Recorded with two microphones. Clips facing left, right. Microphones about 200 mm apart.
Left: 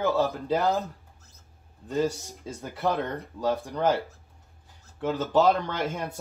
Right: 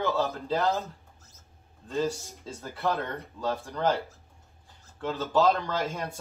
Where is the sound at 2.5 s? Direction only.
15° left (ahead or behind).